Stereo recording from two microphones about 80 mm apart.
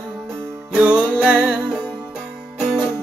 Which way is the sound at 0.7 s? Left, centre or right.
Centre.